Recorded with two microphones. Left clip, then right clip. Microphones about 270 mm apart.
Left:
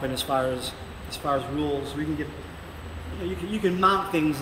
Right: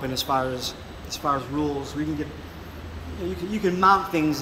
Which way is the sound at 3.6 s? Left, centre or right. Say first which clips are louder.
Right 3 dB; centre.